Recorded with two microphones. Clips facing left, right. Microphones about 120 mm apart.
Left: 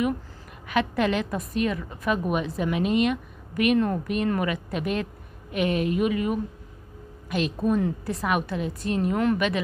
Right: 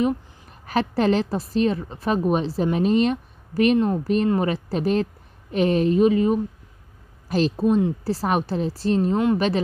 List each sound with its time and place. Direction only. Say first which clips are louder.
0.7 s a woman's voice: right 3 dB; 35° right (ahead or behind)